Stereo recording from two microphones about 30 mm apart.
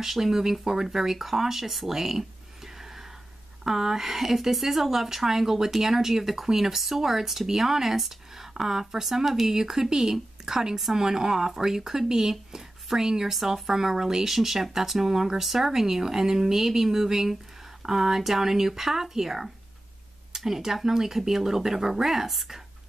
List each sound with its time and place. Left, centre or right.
0.0 s speech: centre
1.9 s a sound: centre
3.6 s speech: centre